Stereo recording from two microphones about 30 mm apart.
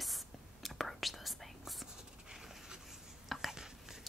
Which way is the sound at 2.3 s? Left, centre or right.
Centre.